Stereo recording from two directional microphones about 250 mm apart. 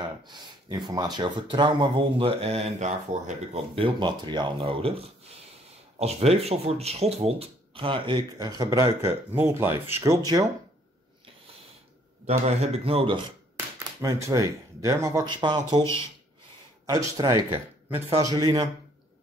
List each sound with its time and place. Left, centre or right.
0.3 s speech: centre
12.3 s speech: right
13.7 s speech: centre
16.8 s speech: centre